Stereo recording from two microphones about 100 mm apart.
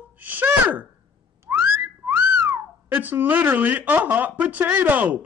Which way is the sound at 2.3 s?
20° right (ahead or behind).